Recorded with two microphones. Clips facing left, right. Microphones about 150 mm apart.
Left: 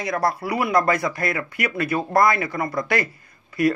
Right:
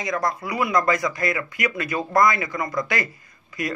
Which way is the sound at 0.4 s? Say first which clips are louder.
Left 2 dB; 60° left (ahead or behind).